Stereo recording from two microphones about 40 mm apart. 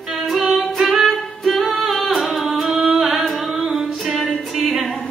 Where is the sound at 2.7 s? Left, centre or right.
Centre.